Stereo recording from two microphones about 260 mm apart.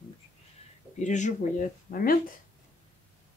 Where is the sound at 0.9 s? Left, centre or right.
Left.